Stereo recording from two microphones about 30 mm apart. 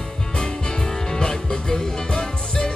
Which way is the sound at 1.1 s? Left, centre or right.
Left.